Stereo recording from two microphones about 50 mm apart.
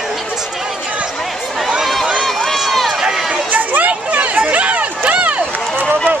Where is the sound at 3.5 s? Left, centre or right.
Right.